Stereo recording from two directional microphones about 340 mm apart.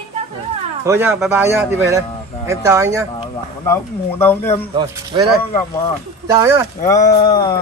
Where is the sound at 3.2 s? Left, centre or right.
Centre.